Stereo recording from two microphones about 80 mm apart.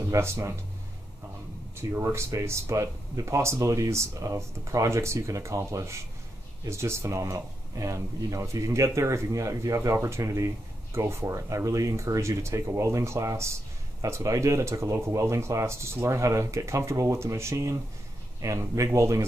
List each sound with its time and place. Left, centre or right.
0.1 s speech: right
1.8 s speech: right